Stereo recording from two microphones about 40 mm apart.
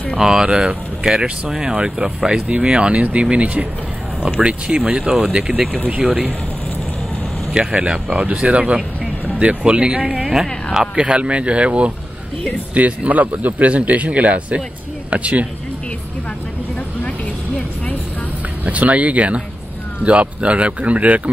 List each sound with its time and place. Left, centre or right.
0.2 s speech: centre
7.5 s speech: right
18.7 s speech: right